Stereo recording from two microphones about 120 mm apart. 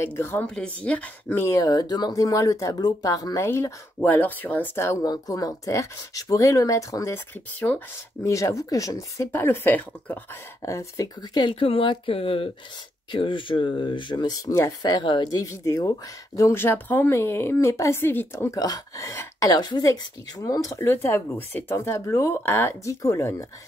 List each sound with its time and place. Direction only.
0.0 s speech: 20° left (ahead or behind)
1.4 s speech: 30° left (ahead or behind)
5.0 s speech: 30° left (ahead or behind)
7.6 s speech: 15° left (ahead or behind)
8.3 s speech: 25° left (ahead or behind)
10.6 s speech: 25° left (ahead or behind)
11.4 s speech: 45° left (ahead or behind); by 23.4 s 25° left (ahead or behind)